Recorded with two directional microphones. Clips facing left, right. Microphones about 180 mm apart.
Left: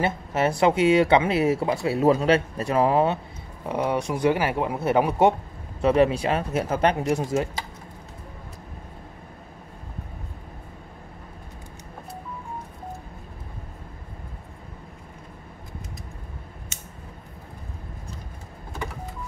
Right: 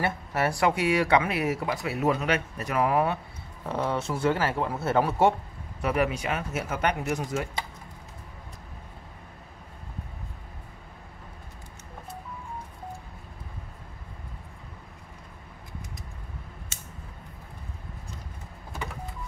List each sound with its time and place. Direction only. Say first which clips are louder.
0.0 s speech: left 4 dB; 20° left (ahead or behind)
3.6 s speech: left 4 dB; 15° left (ahead or behind)
5.8 s speech: left 7 dB; 25° left (ahead or behind)